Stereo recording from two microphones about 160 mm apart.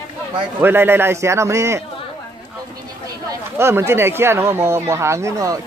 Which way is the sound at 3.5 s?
15° right (ahead or behind).